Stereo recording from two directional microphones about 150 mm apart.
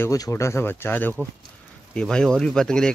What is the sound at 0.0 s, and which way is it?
Speech, 20° left (ahead or behind).